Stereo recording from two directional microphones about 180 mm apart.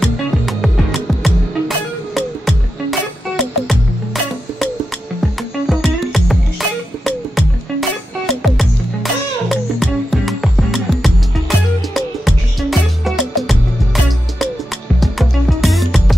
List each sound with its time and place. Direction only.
0.0 s music: centre (ahead or behind)
5.7 s music: centre (ahead or behind)
8.3 s music: centre (ahead or behind)
15.0 s music: centre (ahead or behind)